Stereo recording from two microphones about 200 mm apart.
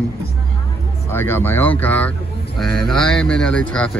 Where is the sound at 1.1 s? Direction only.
10° left (ahead or behind).